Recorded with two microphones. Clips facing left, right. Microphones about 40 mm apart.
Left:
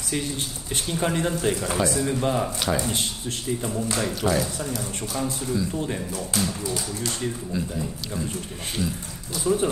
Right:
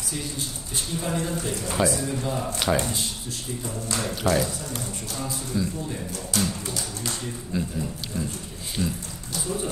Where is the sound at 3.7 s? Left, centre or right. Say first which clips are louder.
Left 1 dB; centre.